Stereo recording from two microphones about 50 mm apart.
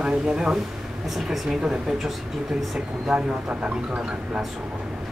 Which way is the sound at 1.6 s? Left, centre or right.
Centre.